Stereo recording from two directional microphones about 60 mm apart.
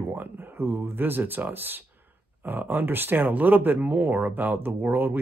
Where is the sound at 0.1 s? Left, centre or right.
Right.